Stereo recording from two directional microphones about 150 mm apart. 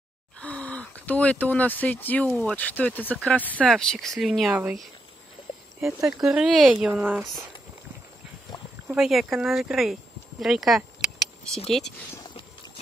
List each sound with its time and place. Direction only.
0.4 s speech: 10° left (ahead or behind); by 4.7 s 5° right (ahead or behind)
5.8 s speech: 20° right (ahead or behind)
6.2 s speech: 5° right (ahead or behind)
8.8 s speech: 5° right (ahead or behind)
12.2 s a sound: 25° left (ahead or behind)